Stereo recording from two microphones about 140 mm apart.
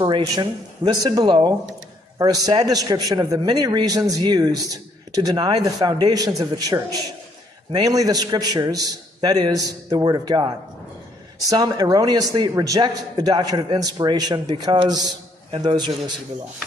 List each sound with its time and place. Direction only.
0.4 s a man's voice: 30° right (ahead or behind)